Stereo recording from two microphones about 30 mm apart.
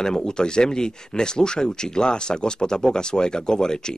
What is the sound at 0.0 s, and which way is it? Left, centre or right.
Speech, left.